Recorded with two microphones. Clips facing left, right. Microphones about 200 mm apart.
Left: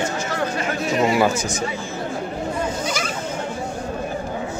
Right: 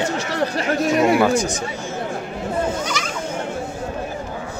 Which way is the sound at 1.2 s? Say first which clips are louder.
Right 2 dB; 5° left (ahead or behind).